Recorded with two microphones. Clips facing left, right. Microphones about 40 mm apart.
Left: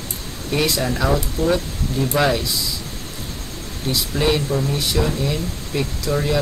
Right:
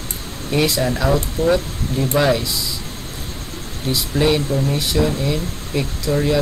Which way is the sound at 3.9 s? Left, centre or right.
Centre.